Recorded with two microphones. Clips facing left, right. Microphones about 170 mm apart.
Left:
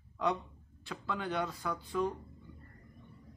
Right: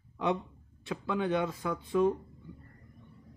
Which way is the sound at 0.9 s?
25° right (ahead or behind).